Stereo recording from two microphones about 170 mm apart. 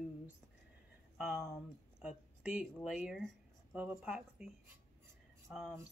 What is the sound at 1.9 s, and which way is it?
Speech, 5° right (ahead or behind).